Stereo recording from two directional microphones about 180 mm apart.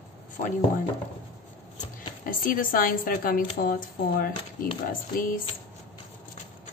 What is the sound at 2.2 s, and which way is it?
Speech, 50° left (ahead or behind).